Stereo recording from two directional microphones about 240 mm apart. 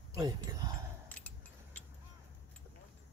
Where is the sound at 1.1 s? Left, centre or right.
Centre.